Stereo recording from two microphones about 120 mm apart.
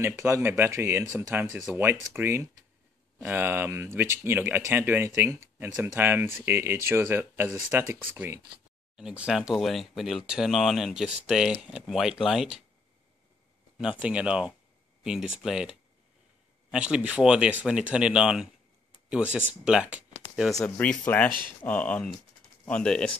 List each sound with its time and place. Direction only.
0.0 s speech: 20° right (ahead or behind)
8.9 s speech: 5° right (ahead or behind)
13.7 s speech: 5° right (ahead or behind)
20.6 s speech: 10° left (ahead or behind)
21.3 s speech: 40° right (ahead or behind)
21.6 s speech: 10° left (ahead or behind)